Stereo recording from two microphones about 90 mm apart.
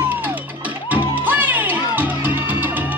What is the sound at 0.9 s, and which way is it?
Music, 20° right (ahead or behind).